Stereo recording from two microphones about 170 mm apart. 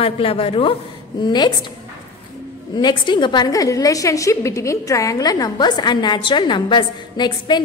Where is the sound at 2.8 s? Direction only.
25° left (ahead or behind).